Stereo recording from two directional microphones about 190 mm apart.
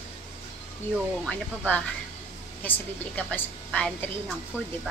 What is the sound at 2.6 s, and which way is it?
A woman's voice, 10° left (ahead or behind).